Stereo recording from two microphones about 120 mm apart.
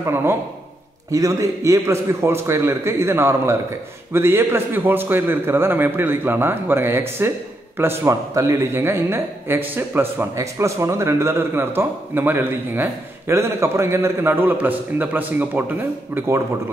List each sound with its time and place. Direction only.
0.0 s a man's voice: 20° right (ahead or behind)